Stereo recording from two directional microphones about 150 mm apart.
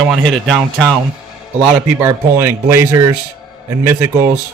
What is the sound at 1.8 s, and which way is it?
A man's voice, 15° right (ahead or behind).